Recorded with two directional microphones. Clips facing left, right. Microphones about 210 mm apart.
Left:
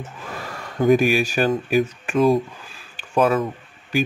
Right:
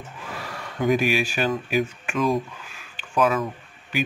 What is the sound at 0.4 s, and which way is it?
Speech, 45° left (ahead or behind).